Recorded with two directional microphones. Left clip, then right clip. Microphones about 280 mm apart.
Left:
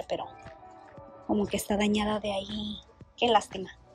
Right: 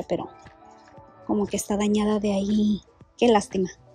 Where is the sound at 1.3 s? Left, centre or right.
Centre.